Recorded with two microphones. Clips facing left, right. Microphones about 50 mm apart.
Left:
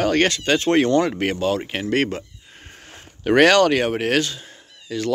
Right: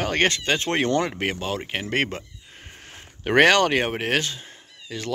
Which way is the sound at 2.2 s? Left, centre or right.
Centre.